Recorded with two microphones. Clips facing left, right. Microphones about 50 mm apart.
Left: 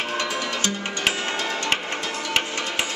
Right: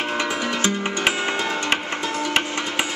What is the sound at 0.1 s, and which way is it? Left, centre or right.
Music, centre.